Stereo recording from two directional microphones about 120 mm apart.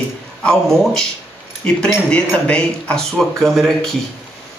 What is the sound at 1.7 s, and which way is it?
A man's voice, 10° left (ahead or behind).